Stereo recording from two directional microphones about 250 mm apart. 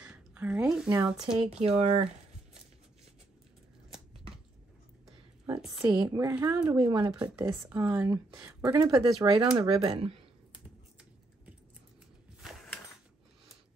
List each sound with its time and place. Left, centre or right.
0.0 s a sound: centre
0.8 s speech: centre
1.6 s speech: right
5.6 s a woman's voice: centre
5.9 s speech: centre
7.2 s speech: centre; by 10.2 s right
12.4 s a sound: centre